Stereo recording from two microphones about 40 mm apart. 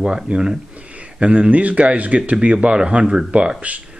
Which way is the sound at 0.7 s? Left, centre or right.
Right.